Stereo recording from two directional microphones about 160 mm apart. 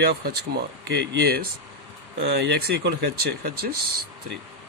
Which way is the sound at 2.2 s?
85° right.